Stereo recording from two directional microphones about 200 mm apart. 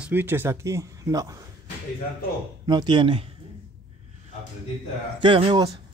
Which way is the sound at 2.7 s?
20° right (ahead or behind).